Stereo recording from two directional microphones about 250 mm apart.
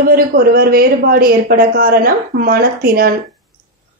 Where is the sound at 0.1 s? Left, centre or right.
Right.